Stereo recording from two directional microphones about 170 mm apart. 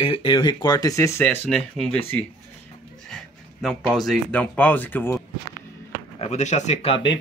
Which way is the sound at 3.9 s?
5° left (ahead or behind).